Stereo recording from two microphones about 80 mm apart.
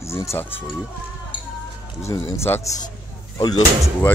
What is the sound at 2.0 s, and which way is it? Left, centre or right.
Speech, left.